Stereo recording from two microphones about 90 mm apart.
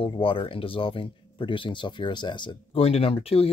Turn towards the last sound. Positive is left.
turn(degrees=90)